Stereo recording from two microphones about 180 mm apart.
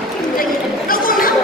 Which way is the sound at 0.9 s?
50° left (ahead or behind).